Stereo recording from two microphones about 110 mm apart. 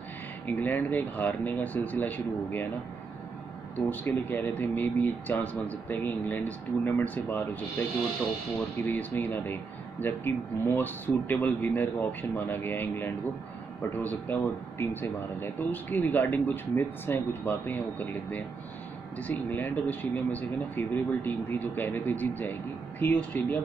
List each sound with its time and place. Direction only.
0.5 s speech: 15° left (ahead or behind)
3.9 s speech: 15° left (ahead or behind)
8.8 s speech: 15° left (ahead or behind)